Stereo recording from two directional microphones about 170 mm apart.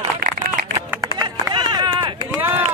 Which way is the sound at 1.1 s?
20° right (ahead or behind).